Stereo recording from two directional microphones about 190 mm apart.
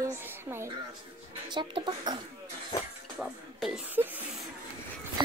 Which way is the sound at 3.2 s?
5° right (ahead or behind).